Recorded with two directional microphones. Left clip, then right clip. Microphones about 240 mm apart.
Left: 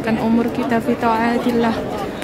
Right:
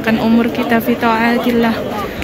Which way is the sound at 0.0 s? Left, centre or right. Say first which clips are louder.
Right 4 dB; centre.